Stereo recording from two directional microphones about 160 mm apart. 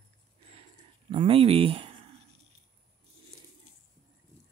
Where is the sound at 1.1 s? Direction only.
35° right (ahead or behind).